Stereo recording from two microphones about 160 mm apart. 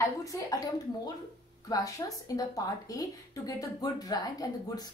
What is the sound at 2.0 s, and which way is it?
A woman's voice, 20° left (ahead or behind).